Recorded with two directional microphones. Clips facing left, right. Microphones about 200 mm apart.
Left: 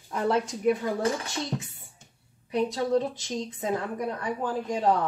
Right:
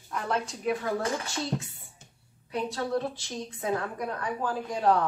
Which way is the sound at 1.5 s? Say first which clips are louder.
Even; 5° right (ahead or behind).